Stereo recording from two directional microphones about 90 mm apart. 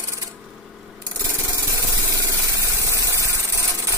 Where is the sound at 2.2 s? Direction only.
40° right (ahead or behind).